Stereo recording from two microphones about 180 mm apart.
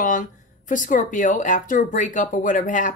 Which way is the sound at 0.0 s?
45° left (ahead or behind).